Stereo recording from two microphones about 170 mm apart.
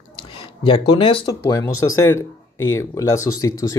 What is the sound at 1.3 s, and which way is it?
Speech, 20° left (ahead or behind).